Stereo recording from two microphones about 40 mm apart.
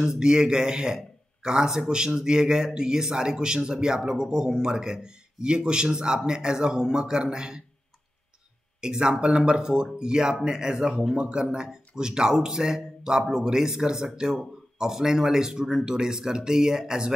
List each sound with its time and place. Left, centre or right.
0.0 s speech: centre
8.8 s a man's voice: centre